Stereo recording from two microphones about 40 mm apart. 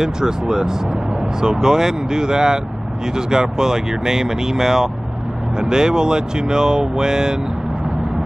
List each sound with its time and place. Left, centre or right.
0.0 s speech: centre